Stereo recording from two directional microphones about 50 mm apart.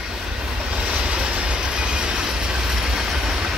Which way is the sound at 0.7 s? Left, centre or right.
Right.